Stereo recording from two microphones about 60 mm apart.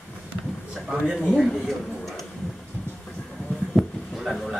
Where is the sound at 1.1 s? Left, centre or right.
Centre.